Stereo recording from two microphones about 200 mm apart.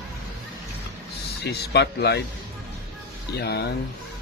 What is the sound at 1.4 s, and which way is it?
Speech, 55° left (ahead or behind).